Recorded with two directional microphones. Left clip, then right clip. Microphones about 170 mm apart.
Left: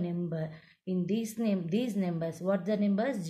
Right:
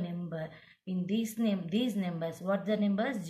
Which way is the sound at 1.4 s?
60° left (ahead or behind).